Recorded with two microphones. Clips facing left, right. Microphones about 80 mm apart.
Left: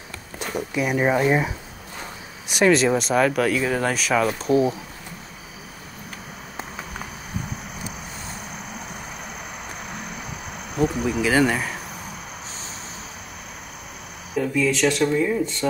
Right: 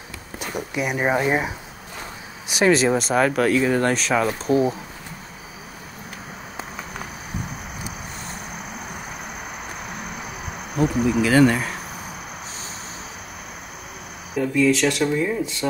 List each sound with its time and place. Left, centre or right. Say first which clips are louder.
0.6 s speech: left 2 dB; centre
2.4 s speech: even; centre
11.2 s speech: right 3 dB; centre
14.3 s speech: right 3 dB; centre